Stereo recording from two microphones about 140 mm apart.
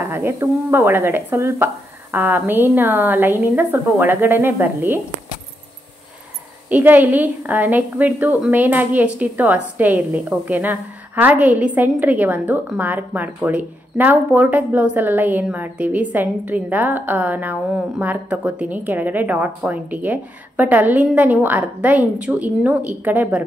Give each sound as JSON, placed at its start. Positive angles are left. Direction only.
{"t": 0.0, "sound": "a woman's voice", "side_deg": -20}
{"t": 6.7, "sound": "a woman's voice", "side_deg": -10}